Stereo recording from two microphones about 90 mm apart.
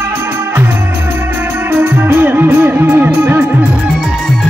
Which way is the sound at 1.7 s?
20° right (ahead or behind).